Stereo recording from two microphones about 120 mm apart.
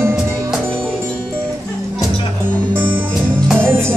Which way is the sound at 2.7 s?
15° right (ahead or behind).